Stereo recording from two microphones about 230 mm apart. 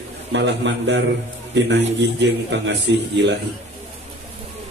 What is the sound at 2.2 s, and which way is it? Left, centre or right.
A man's voice, right.